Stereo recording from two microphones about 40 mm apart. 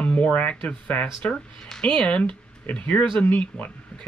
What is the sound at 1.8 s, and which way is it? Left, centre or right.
Speech, left.